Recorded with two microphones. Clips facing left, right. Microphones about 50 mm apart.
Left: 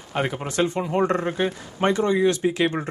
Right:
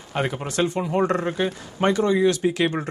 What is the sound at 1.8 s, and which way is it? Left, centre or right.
Speech, left.